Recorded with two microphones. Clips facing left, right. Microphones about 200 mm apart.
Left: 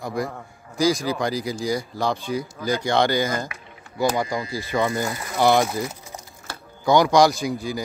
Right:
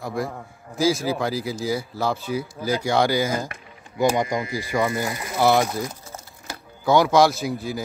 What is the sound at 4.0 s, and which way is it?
Speech, 20° right (ahead or behind).